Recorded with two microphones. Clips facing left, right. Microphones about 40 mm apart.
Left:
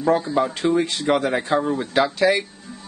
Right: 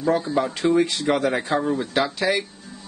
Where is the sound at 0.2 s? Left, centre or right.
Centre.